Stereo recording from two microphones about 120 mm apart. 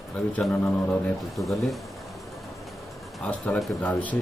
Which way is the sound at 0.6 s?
25° left (ahead or behind).